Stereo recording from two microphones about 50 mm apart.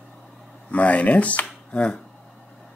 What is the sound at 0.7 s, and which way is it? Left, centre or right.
Speech, left.